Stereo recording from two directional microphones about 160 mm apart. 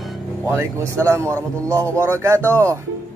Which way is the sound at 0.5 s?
15° right (ahead or behind).